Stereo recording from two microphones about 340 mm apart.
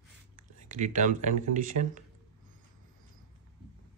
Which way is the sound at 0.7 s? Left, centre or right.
Right.